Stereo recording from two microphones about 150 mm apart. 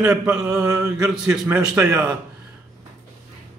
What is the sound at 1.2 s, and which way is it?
Speech, 5° right (ahead or behind).